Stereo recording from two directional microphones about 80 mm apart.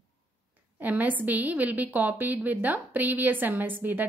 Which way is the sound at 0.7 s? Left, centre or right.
Right.